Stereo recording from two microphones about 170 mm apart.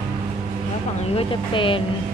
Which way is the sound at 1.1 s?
30° left (ahead or behind).